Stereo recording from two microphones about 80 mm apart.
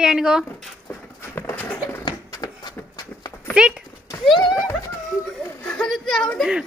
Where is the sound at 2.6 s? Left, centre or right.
Left.